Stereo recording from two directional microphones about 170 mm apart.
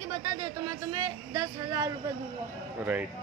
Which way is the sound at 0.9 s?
25° right (ahead or behind).